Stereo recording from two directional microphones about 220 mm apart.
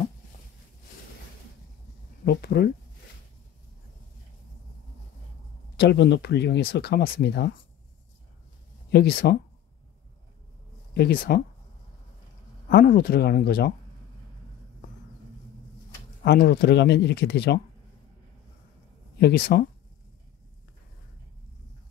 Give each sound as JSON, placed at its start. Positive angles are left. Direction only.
{"t": 2.2, "sound": "speech", "side_deg": 50}
{"t": 5.8, "sound": "speech", "side_deg": 50}
{"t": 8.9, "sound": "speech", "side_deg": 45}
{"t": 11.0, "sound": "speech", "side_deg": 45}
{"t": 12.6, "sound": "speech", "side_deg": 40}
{"t": 16.3, "sound": "speech", "side_deg": 45}
{"t": 19.1, "sound": "speech", "side_deg": 45}